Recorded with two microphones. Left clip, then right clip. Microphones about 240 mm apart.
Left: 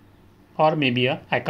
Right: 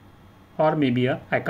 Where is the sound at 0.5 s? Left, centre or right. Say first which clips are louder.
Left 2 dB; centre.